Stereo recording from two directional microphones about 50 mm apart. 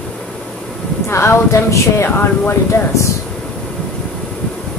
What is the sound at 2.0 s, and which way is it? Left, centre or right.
Speech, left.